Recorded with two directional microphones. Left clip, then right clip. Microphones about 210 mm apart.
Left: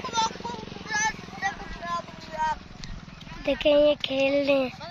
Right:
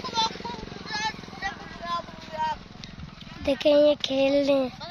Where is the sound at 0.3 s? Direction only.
30° right (ahead or behind).